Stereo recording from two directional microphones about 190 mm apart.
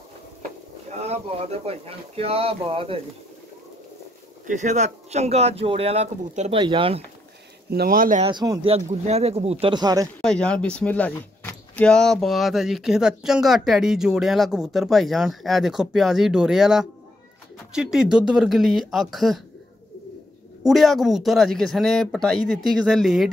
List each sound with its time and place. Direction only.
0.8 s speech: 35° right (ahead or behind)
4.5 s speech: 40° right (ahead or behind)
7.7 s speech: 50° right (ahead or behind)
8.2 s speech: 25° right (ahead or behind)
8.7 s speech: 35° right (ahead or behind)
10.2 s speech: 5° left (ahead or behind)
20.6 s speech: centre (ahead or behind)